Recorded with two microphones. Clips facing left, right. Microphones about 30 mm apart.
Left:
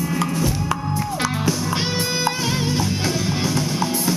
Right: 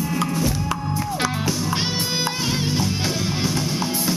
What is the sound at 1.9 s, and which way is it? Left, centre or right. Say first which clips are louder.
Music: left 2 dB; right.